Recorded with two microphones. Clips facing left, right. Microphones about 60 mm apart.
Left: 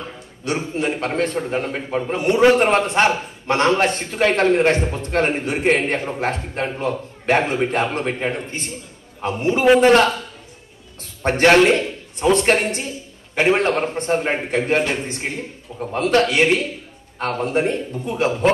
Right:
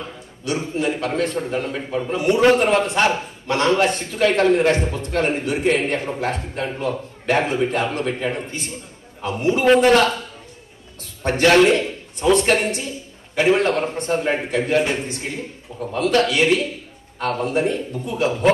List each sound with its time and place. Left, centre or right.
0.5 s a man's voice: left
9.4 s a man's voice: left
11.2 s a man's voice: left